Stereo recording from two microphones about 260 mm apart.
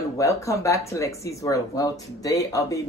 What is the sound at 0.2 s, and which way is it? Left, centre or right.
Speech, centre.